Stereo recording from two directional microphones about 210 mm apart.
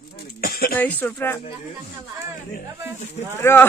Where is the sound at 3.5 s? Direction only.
10° left (ahead or behind).